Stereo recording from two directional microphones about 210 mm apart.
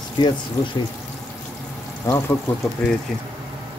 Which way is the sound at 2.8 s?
5° left (ahead or behind).